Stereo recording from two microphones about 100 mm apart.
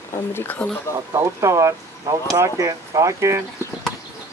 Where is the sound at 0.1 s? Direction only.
25° left (ahead or behind).